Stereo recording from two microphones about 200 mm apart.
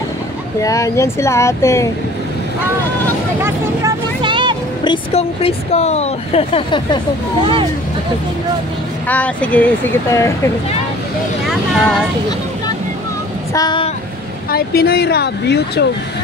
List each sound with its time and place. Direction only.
0.6 s speech: 15° left (ahead or behind)
3.4 s vehicle: 20° right (ahead or behind)
4.8 s speech: 25° left (ahead or behind)
9.0 s speech: 5° left (ahead or behind)
13.5 s speech: 20° left (ahead or behind)
14.5 s speech: 50° left (ahead or behind)